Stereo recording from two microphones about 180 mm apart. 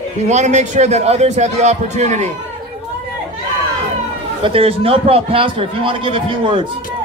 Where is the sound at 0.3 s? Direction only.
40° right (ahead or behind).